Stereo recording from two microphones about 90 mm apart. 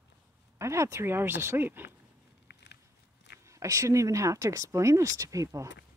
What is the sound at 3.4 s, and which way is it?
Speech, 35° right (ahead or behind).